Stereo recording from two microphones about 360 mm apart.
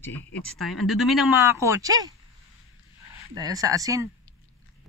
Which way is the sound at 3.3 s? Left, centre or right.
Centre.